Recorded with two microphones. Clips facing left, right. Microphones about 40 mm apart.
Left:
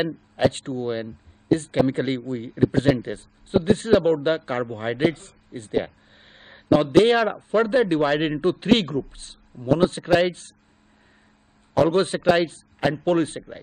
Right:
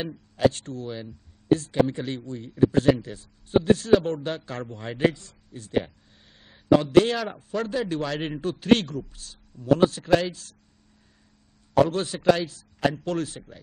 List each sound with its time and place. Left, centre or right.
0.0 s a man's voice: left
11.8 s a man's voice: left